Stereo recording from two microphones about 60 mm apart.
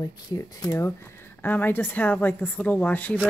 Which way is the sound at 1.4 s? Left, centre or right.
Left.